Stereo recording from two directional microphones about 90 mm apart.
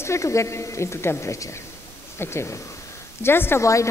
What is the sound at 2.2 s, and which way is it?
A woman's voice, 30° left (ahead or behind).